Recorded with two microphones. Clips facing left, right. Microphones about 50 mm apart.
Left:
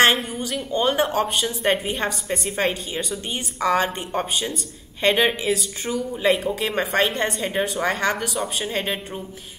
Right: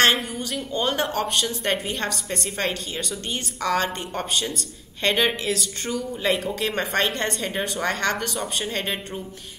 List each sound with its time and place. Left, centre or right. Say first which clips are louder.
0.0 s a woman's voice: left 2 dB; centre